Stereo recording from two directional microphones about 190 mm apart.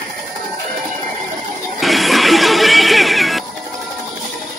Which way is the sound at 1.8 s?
Centre (ahead or behind).